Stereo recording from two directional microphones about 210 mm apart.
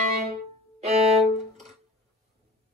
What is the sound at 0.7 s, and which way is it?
Violin, 30° right (ahead or behind).